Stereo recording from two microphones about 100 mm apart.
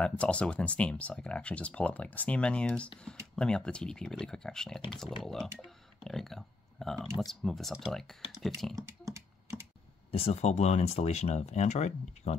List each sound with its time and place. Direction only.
0.0 s speech: 10° left (ahead or behind)
8.7 s typing: 30° right (ahead or behind)
10.1 s speech: 85° left